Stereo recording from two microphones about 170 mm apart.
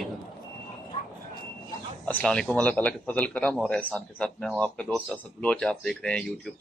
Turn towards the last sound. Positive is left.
turn(degrees=5)  # may be behind; listen again after turning